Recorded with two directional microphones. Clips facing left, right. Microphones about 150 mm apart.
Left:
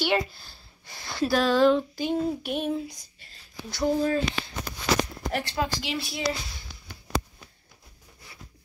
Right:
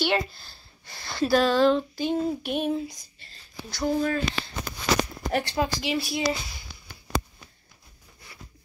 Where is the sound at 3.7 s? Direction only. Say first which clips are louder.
Left 1 dB; 25° left (ahead or behind).